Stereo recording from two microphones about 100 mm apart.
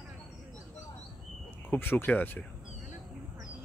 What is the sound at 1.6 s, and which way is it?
Speech, 20° left (ahead or behind).